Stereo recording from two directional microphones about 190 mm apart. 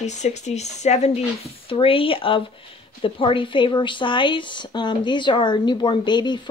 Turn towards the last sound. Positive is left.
turn(degrees=25)  # may be behind; listen again after turning